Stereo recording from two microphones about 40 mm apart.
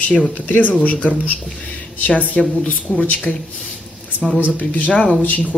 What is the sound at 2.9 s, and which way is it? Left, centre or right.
Speech, left.